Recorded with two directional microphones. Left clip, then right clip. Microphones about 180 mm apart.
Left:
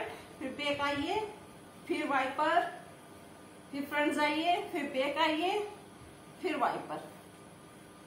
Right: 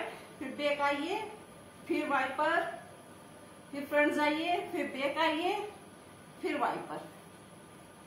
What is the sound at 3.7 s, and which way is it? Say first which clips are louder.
A woman's voice: right 3 dB; 15° left (ahead or behind).